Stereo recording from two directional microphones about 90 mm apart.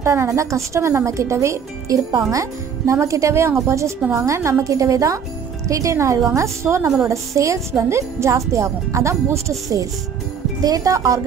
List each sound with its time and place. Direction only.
0.0 s speech: 30° right (ahead or behind)